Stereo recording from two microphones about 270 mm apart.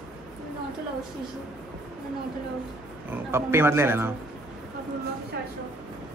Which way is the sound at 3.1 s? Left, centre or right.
Centre.